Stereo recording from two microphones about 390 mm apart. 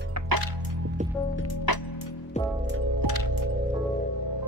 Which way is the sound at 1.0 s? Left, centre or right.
Centre.